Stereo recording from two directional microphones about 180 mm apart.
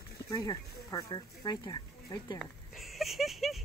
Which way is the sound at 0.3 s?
20° left (ahead or behind).